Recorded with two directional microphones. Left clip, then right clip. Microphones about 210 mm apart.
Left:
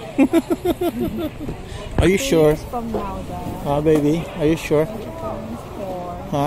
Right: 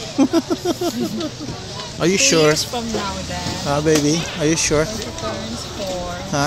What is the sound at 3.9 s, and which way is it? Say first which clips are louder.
Speech: even; 10° left (ahead or behind).